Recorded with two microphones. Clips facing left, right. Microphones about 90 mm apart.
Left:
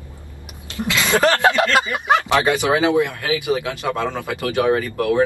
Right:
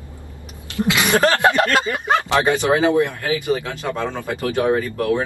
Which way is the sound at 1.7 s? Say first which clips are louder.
Left 1 dB; 15° left (ahead or behind).